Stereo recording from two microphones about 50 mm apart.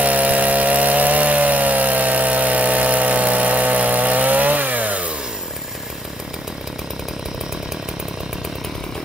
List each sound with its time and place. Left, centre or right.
0.0 s chainsaw: right